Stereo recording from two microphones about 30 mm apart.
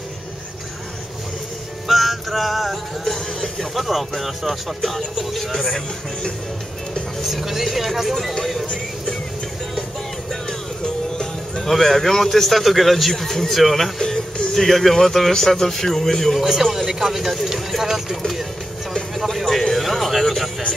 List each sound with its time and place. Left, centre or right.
1.9 s music: centre
3.5 s a man's voice: centre
7.2 s a man's voice: centre
10.8 s music: left
11.6 s a man's voice: centre
13.9 s music: centre
14.5 s a man's voice: centre
16.6 s speech: centre
19.1 s a man's voice: centre